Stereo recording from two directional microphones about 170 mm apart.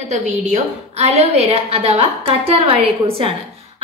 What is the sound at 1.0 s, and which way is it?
A woman's voice, 40° right (ahead or behind).